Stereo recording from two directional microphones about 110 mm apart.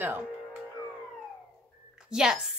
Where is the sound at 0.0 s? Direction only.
15° right (ahead or behind).